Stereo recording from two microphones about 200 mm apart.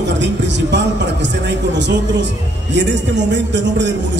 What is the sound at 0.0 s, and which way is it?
A man's voice, 60° right (ahead or behind).